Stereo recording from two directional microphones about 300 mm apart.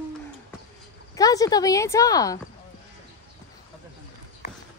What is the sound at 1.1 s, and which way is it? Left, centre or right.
Speech, centre.